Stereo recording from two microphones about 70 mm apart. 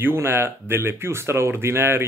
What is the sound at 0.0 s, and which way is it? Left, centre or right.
Speech, right.